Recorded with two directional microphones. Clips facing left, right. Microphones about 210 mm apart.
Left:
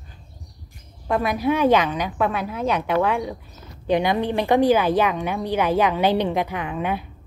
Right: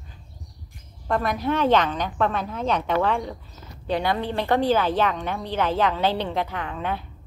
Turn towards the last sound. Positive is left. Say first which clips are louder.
# left 3 dB
turn(degrees=10)  # may be behind; listen again after turning